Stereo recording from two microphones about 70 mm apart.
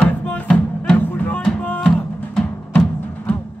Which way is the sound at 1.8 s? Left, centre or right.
Centre.